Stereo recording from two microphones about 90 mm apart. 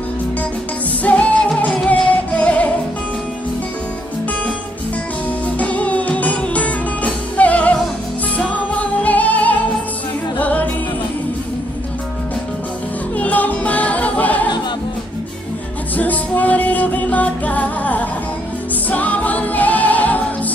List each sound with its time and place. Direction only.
1.0 s music: 15° left (ahead or behind)
5.6 s music: 15° left (ahead or behind)
13.2 s music: 15° left (ahead or behind)
16.0 s music: 20° left (ahead or behind)